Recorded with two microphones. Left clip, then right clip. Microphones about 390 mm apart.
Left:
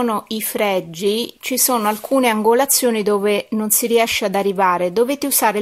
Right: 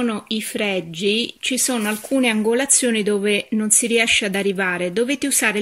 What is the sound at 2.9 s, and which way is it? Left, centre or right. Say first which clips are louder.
Speech: left 2 dB; centre.